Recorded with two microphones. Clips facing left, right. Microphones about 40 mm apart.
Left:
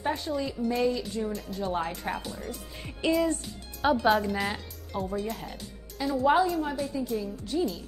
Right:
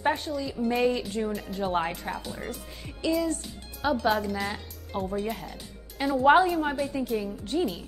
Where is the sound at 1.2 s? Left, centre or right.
Right.